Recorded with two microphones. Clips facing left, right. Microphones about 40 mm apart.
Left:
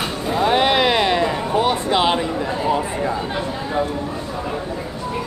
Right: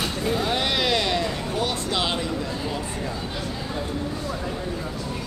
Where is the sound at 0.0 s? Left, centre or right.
Left.